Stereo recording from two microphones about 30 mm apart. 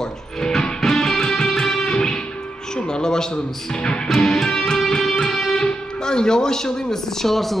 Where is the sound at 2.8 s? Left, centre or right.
Left.